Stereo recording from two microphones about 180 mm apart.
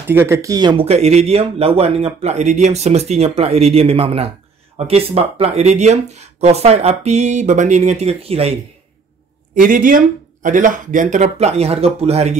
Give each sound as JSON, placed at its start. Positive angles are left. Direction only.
{"t": 0.1, "sound": "speech", "side_deg": -15}
{"t": 9.6, "sound": "speech", "side_deg": -50}